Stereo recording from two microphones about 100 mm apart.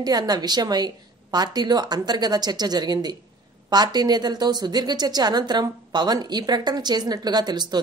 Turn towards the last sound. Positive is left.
turn(degrees=-45)  # may be behind; listen again after turning